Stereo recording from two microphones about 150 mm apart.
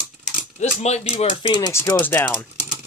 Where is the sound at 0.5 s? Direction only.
45° left (ahead or behind).